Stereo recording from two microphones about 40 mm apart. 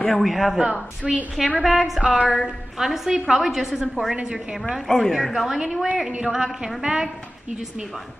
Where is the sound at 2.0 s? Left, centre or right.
Right.